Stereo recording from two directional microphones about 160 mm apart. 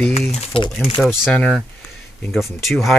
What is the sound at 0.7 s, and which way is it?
Speech, centre (ahead or behind).